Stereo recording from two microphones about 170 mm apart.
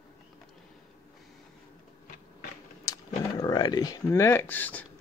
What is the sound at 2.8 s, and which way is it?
Speech, 20° left (ahead or behind).